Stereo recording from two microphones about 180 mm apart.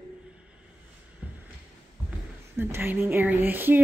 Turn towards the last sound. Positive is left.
turn(degrees=-10)  # may be behind; listen again after turning